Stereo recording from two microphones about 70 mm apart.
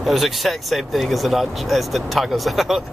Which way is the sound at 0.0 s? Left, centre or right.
Centre.